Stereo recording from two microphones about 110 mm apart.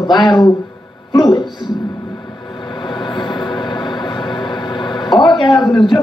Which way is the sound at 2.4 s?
40° left (ahead or behind).